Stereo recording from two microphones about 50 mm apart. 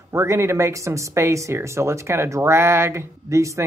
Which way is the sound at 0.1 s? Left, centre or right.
Right.